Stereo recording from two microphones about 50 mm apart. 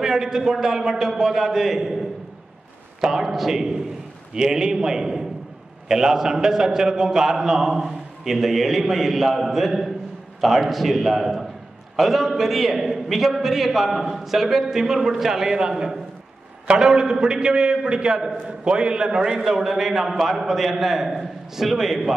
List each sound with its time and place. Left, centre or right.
0.0 s a man's voice: centre